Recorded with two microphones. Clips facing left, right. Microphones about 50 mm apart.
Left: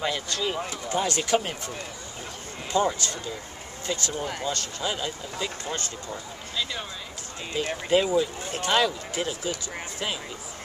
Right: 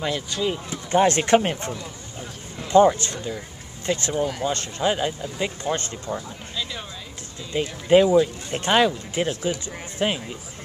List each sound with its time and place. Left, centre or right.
0.0 s speech: centre
0.8 s speech: right
2.7 s speech: right
6.5 s a sound: centre
7.5 s speech: right